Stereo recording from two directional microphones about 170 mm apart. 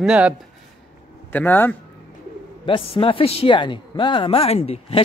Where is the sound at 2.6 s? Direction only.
30° left (ahead or behind).